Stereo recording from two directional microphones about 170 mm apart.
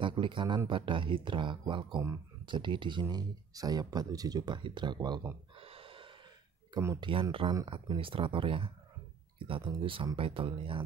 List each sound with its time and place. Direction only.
0.0 s a man's voice: 30° right (ahead or behind)
5.6 s gasp: 35° right (ahead or behind)
6.7 s speech: 20° right (ahead or behind)
7.1 s speech: 30° right (ahead or behind)